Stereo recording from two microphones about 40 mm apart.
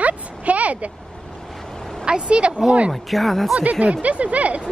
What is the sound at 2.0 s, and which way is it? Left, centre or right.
Speech, right.